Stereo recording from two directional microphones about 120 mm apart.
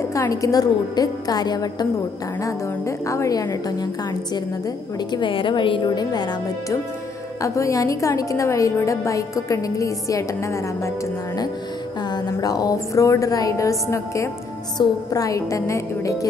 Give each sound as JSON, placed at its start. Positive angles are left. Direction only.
{"t": 0.1, "sound": "a woman's voice", "side_deg": 30}
{"t": 3.1, "sound": "a woman's voice", "side_deg": 30}
{"t": 5.1, "sound": "a woman's voice", "side_deg": 45}
{"t": 12.4, "sound": "a woman's voice", "side_deg": 30}